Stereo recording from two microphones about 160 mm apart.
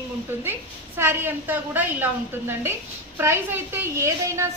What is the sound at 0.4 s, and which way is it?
A woman's voice, 15° right (ahead or behind).